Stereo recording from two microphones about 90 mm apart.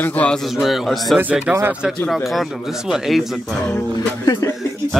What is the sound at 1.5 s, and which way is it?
Speech, 20° right (ahead or behind).